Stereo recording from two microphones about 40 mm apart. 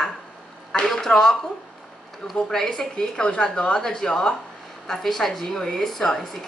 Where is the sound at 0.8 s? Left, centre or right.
Centre.